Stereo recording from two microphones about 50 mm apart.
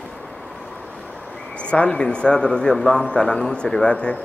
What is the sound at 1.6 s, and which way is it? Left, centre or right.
A man's voice, left.